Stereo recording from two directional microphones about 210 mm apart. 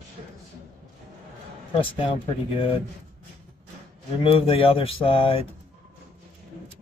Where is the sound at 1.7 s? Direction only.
25° left (ahead or behind).